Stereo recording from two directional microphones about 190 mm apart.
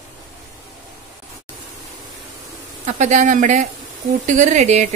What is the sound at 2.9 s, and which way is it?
Speech, 40° right (ahead or behind).